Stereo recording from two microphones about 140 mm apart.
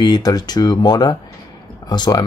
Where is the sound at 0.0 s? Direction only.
30° left (ahead or behind).